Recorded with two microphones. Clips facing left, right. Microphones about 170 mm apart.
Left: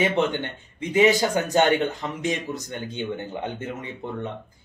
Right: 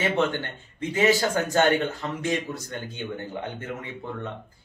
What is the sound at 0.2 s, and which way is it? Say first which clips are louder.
Speech: left 1 dB; 15° left (ahead or behind).